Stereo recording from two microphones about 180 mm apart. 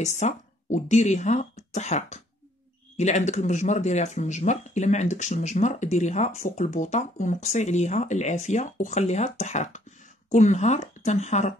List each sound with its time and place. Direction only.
0.0 s speech: 40° left (ahead or behind)